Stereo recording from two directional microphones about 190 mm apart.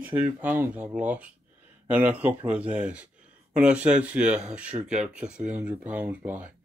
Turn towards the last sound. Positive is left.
turn(degrees=-10)  # may be behind; listen again after turning